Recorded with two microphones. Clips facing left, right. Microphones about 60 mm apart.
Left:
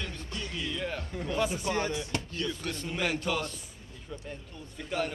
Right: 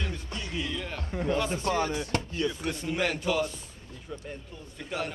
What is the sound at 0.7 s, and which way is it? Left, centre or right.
Speech, centre.